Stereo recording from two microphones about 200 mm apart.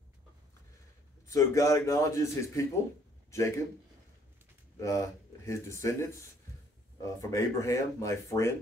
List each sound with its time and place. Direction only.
1.2 s a man's voice: 15° left (ahead or behind)
4.7 s speech: 15° left (ahead or behind)
7.2 s speech: 15° left (ahead or behind)